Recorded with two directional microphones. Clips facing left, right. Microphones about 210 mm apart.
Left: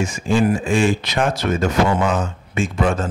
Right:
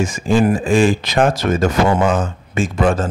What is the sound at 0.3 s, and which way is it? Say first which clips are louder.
Speech: right 3 dB; 40° right (ahead or behind).